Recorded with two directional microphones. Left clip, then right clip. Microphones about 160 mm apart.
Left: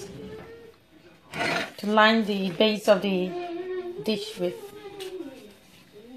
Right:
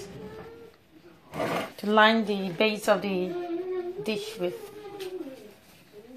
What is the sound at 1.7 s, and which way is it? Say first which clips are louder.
Speech: even; 10° left (ahead or behind).